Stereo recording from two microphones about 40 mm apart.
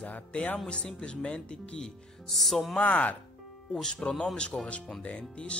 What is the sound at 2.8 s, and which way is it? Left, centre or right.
Speech, left.